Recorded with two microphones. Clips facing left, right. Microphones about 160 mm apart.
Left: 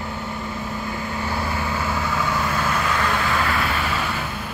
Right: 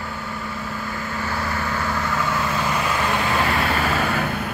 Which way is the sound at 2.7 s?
15° right (ahead or behind).